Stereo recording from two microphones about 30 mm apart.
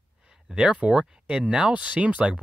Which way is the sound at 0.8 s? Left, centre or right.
Right.